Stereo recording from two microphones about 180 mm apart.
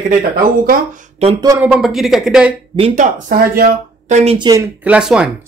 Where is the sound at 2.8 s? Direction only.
45° right (ahead or behind).